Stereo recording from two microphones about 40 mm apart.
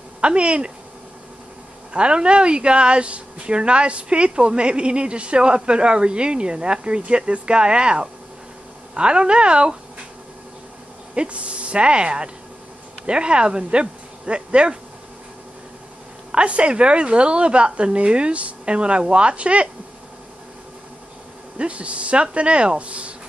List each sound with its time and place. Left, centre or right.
0.2 s a woman's voice: right
2.0 s a woman's voice: right
11.1 s a woman's voice: right
16.3 s a woman's voice: right
21.5 s speech: right